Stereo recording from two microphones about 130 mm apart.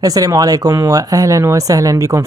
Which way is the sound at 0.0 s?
30° right (ahead or behind).